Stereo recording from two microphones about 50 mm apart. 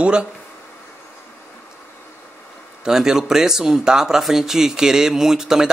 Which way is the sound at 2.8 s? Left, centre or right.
Centre.